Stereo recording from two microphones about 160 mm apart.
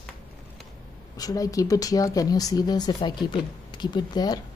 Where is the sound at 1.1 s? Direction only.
20° left (ahead or behind).